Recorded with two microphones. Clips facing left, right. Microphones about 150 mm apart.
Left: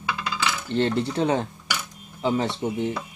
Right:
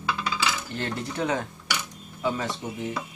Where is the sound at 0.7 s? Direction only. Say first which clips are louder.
Left 7 dB; 30° left (ahead or behind).